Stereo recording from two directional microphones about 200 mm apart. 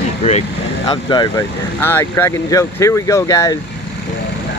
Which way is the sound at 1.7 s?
10° left (ahead or behind).